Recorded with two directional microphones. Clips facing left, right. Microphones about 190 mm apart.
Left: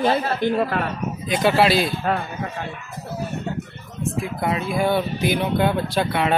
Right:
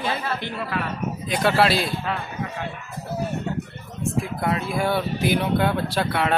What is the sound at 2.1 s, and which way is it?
Speech, 45° left (ahead or behind).